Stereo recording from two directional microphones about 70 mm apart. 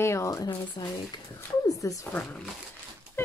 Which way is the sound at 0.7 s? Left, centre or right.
Left.